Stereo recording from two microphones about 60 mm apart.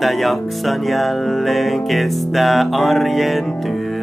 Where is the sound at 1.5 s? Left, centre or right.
Centre.